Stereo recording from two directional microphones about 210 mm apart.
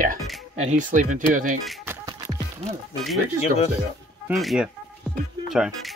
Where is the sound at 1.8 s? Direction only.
15° right (ahead or behind).